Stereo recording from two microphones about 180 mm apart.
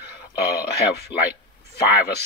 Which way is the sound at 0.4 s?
60° left (ahead or behind).